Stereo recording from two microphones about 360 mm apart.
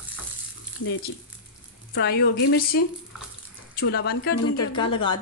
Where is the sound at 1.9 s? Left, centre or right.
Left.